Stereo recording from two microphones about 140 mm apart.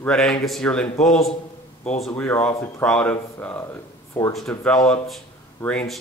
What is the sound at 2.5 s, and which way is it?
Speech, 20° left (ahead or behind).